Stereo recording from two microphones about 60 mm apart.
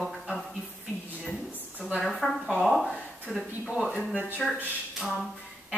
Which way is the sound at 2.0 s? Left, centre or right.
Centre.